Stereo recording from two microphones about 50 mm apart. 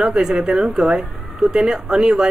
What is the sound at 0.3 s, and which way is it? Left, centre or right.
Speech, centre.